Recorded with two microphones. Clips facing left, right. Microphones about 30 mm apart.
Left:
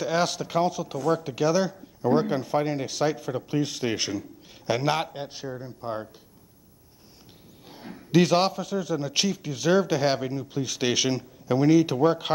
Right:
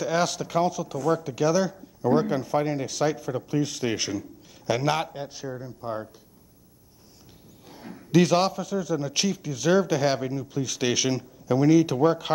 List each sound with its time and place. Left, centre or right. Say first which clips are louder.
0.0 s speech: even; centre
7.6 s a sound: even; left
8.1 s speech: even; centre
9.4 s speech: right 1 dB; left